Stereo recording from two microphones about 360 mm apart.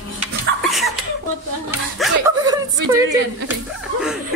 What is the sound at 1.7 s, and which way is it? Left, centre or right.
Speech, centre.